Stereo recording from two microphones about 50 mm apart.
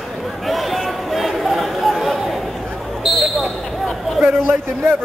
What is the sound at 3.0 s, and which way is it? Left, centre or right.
Basketball bounce, centre.